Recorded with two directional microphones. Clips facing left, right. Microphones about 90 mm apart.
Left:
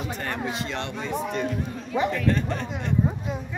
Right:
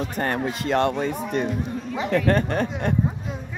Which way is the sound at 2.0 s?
65° right (ahead or behind).